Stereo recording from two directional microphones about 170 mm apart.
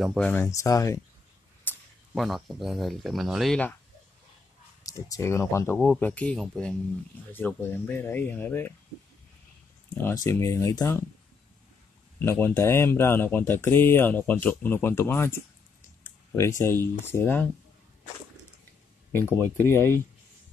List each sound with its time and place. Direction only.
0.0 s speech: centre (ahead or behind)
0.3 s speech: 15° left (ahead or behind)
1.7 s a sound: 10° left (ahead or behind)
2.1 s speech: centre (ahead or behind)
4.8 s speech: 20° left (ahead or behind)
10.0 s speech: 15° left (ahead or behind)
12.2 s speech: 10° left (ahead or behind)
19.5 s speech: 15° left (ahead or behind)